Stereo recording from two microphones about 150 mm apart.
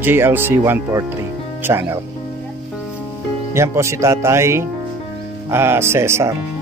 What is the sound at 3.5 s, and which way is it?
Speech, 20° right (ahead or behind).